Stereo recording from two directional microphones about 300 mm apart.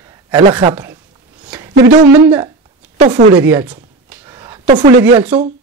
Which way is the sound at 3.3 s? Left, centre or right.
Centre.